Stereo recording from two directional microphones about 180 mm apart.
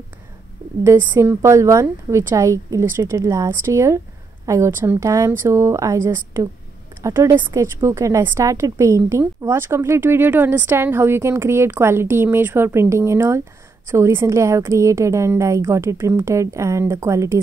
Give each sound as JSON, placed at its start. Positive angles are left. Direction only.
{"t": 0.8, "sound": "speech", "side_deg": -15}